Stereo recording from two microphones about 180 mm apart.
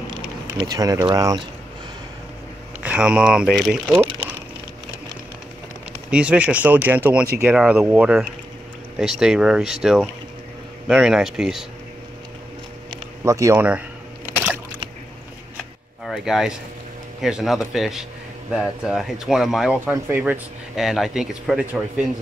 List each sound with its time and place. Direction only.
0.6 s speech: 20° right (ahead or behind)
2.8 s speech: 5° right (ahead or behind)
6.0 s speech: 5° right (ahead or behind)
13.2 s a sound: 15° right (ahead or behind)
16.0 s speech: centre (ahead or behind)